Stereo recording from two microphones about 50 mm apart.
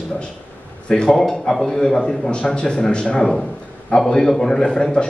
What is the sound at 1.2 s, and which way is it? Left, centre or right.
A man's voice, centre.